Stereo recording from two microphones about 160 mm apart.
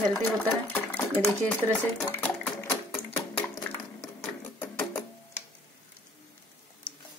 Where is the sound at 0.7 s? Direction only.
10° left (ahead or behind).